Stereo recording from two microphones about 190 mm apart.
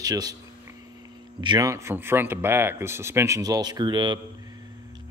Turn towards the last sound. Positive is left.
turn(degrees=-25)  # may be behind; listen again after turning